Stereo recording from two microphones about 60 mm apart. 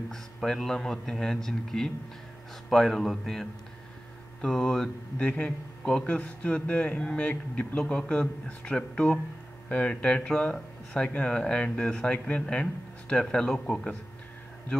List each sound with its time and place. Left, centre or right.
0.1 s speech: centre
5.2 s speech: left